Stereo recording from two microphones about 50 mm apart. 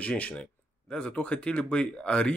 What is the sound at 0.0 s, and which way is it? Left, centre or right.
Speech, left.